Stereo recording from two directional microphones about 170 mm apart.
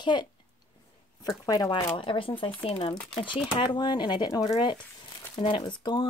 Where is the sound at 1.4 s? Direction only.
20° left (ahead or behind).